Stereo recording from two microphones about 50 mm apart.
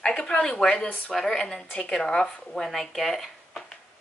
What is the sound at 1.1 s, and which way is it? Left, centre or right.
A woman's voice, centre.